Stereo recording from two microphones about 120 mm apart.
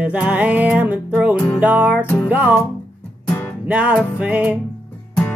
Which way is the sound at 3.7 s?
10° right (ahead or behind).